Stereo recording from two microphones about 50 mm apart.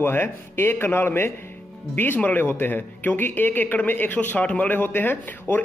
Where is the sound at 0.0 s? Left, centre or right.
Left.